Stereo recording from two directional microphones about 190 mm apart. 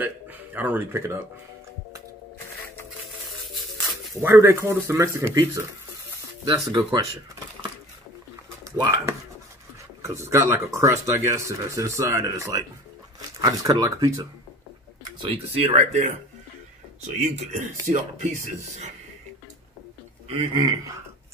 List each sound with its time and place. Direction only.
0.0 s speech: 10° right (ahead or behind)
4.1 s speech: 15° right (ahead or behind)
6.4 s speech: 25° right (ahead or behind)
8.7 s speech: 20° right (ahead or behind)
15.1 s speech: 30° right (ahead or behind)
17.5 s speech: 40° right (ahead or behind)
20.2 s speech: 25° right (ahead or behind)